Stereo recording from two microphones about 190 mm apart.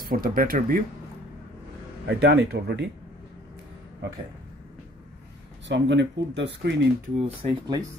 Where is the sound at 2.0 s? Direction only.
60° right (ahead or behind).